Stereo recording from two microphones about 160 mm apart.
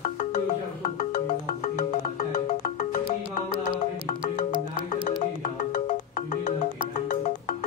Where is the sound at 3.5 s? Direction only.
35° right (ahead or behind).